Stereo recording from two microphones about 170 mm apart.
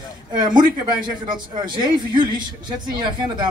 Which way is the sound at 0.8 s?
25° right (ahead or behind).